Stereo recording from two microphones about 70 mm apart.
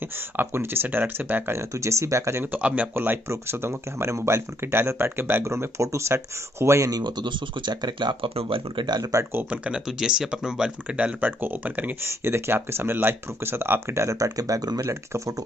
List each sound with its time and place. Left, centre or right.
0.4 s speech: right
1.5 s speech: right
2.5 s speech: right
6.9 s speech: right
9.5 s speech: centre
12.1 s speech: right